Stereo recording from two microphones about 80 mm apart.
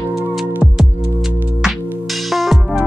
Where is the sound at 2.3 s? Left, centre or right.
Centre.